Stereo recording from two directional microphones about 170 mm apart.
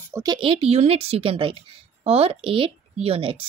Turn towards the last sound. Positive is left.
turn(degrees=-35)  # may be behind; listen again after turning